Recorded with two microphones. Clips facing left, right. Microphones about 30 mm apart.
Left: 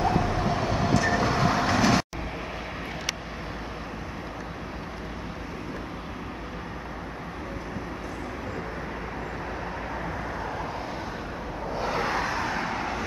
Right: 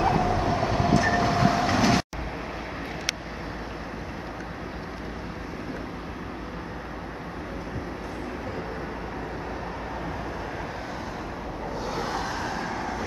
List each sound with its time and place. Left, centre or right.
0.0 s train: centre
11.7 s vehicle: left